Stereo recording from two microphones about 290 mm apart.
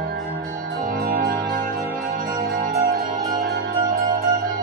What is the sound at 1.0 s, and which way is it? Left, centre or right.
Music, right.